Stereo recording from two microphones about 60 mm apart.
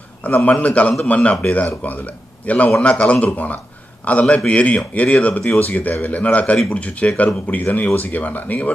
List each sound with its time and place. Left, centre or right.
0.2 s a man's voice: left